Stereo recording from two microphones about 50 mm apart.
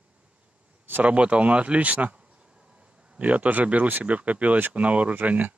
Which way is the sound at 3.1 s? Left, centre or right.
Right.